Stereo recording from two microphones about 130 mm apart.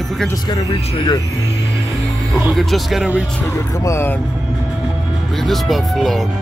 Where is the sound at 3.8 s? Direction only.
20° left (ahead or behind).